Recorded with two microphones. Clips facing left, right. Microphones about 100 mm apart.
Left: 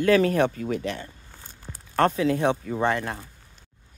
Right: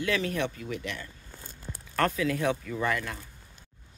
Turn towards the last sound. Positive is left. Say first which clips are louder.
# left 5 dB
turn(degrees=40)  # may be behind; listen again after turning